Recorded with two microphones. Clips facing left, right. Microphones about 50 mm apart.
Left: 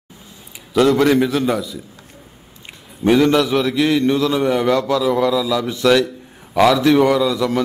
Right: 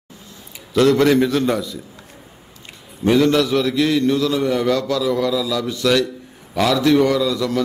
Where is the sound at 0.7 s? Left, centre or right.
Centre.